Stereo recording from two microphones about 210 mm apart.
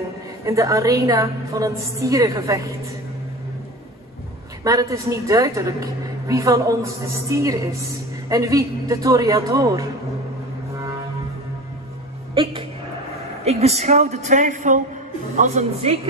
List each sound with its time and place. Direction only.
0.5 s a woman's voice: 15° right (ahead or behind)
4.6 s a woman's voice: 15° right (ahead or behind)
12.4 s a woman's voice: 25° right (ahead or behind)